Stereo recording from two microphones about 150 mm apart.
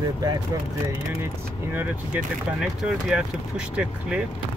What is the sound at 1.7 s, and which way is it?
Speech, 10° right (ahead or behind).